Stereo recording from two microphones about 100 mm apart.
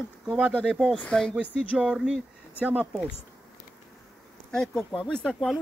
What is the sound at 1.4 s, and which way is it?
Speech, 10° right (ahead or behind).